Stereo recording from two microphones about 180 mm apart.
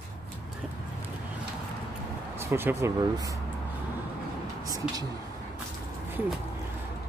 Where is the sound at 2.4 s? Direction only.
15° right (ahead or behind).